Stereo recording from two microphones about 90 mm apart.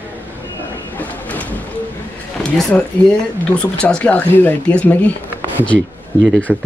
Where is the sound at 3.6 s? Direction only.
10° left (ahead or behind).